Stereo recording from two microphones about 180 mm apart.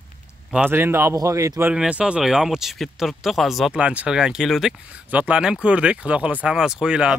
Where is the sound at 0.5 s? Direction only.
10° right (ahead or behind).